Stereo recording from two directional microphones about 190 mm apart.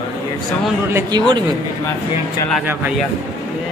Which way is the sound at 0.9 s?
20° right (ahead or behind).